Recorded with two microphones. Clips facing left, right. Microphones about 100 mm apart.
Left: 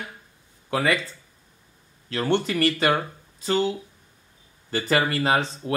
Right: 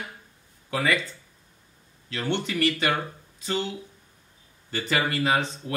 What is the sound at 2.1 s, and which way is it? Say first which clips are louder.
Speech: left 4 dB; 40° left (ahead or behind).